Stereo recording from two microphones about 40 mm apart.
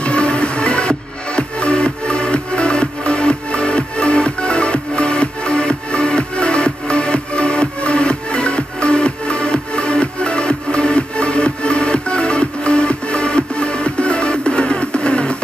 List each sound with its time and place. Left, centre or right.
0.0 s music: left